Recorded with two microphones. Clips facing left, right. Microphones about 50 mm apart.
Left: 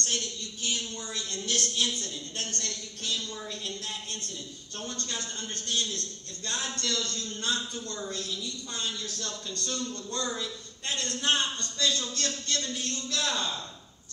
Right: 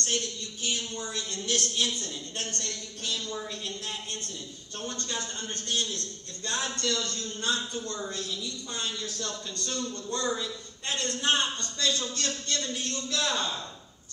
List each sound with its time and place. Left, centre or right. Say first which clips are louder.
0.0 s a man's voice: right 2 dB; right